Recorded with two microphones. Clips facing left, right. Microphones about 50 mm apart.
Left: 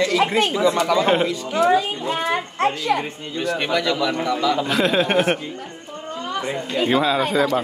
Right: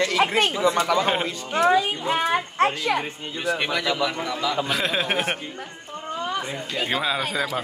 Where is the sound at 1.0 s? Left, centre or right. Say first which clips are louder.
Left 5 dB; centre.